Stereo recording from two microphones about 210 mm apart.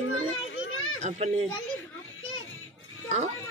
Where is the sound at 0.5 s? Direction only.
75° left (ahead or behind).